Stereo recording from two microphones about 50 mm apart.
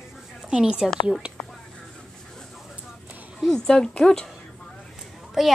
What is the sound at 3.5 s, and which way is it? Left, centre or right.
Speech, centre.